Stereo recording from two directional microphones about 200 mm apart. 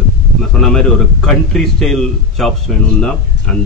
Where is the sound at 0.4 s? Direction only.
Centre (ahead or behind).